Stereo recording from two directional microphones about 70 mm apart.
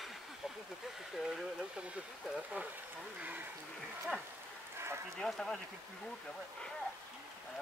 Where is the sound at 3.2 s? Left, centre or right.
Right.